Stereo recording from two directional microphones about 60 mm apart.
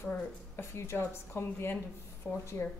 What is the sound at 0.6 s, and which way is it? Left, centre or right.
A woman's voice, left.